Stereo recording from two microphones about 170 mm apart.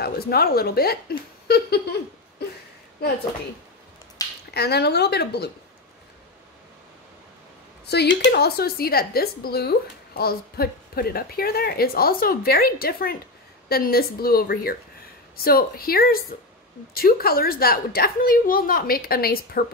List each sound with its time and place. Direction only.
0.0 s a woman's voice: 65° left (ahead or behind)
1.5 s giggle: 70° left (ahead or behind)
4.2 s a sound: 20° left (ahead or behind)
4.6 s speech: 75° left (ahead or behind)
7.8 s a woman's voice: 75° left (ahead or behind)